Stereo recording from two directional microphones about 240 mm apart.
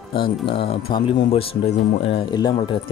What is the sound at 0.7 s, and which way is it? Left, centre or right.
Speech, left.